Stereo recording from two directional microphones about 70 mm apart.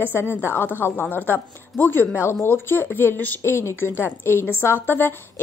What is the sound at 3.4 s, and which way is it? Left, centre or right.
A woman's voice, left.